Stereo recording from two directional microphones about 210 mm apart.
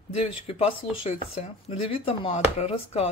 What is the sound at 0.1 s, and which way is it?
Speech, 30° left (ahead or behind).